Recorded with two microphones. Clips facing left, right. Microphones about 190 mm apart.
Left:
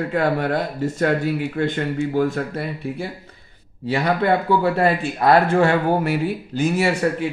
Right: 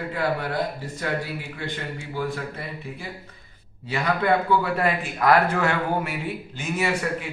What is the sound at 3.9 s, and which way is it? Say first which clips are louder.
Speech: left 3 dB; 35° left (ahead or behind).